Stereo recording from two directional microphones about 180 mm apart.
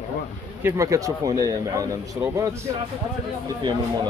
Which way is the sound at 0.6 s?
15° right (ahead or behind).